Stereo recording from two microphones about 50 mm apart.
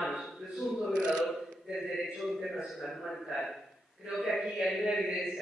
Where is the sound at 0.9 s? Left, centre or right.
Centre.